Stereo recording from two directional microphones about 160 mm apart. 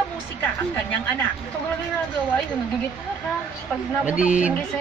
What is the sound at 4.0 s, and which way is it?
Speech, 10° right (ahead or behind).